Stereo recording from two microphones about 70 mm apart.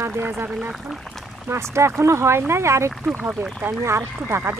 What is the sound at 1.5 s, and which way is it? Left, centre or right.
Speech, right.